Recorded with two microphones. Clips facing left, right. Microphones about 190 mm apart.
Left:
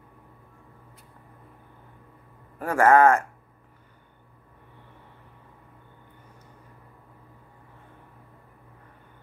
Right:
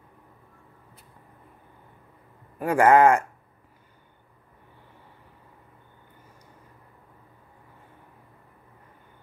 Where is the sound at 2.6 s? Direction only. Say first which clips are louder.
Right 1 dB; 15° right (ahead or behind).